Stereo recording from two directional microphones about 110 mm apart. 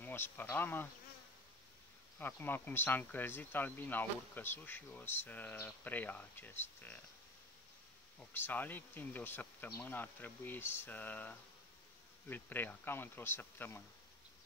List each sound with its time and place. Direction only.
0.0 s speech: 20° left (ahead or behind)
2.1 s speech: 20° left (ahead or behind)
8.2 s speech: 15° left (ahead or behind)